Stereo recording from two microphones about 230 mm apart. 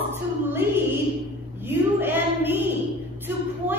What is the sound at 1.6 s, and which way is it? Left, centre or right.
Speech, centre.